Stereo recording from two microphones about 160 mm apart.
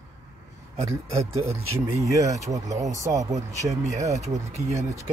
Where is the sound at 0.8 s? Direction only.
20° right (ahead or behind).